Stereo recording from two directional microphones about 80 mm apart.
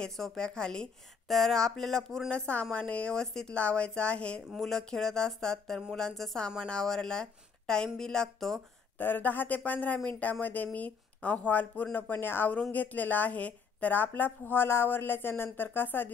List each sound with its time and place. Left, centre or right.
0.0 s speech: centre
4.5 s speech: centre
8.9 s a woman's voice: left